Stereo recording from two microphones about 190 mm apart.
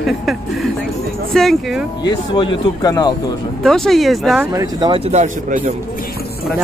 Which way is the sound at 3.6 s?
Centre (ahead or behind).